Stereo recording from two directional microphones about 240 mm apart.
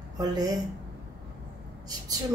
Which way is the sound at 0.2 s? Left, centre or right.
Centre.